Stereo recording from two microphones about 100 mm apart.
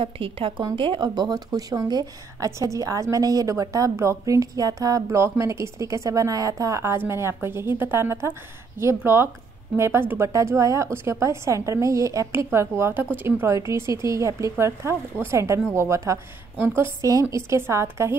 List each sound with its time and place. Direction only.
0.0 s a woman's voice: 60° right (ahead or behind); by 18.1 s 25° right (ahead or behind)